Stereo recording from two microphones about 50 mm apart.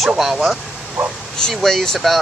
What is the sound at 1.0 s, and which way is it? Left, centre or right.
Speech, right.